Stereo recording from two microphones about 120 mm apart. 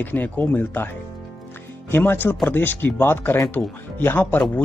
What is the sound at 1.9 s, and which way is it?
Speech, 15° left (ahead or behind).